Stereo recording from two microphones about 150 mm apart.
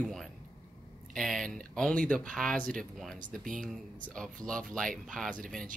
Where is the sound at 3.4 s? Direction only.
60° right (ahead or behind).